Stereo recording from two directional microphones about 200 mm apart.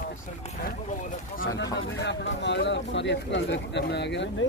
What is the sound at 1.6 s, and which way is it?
Speech, 60° left (ahead or behind).